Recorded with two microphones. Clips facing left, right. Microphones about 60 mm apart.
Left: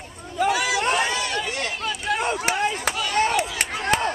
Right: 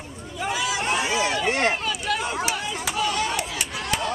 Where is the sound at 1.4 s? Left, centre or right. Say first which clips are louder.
Right 5 dB; right.